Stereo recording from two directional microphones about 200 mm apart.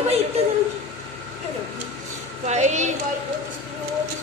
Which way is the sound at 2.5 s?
35° right (ahead or behind).